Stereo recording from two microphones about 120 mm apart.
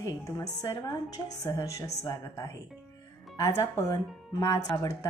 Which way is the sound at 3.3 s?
30° left (ahead or behind).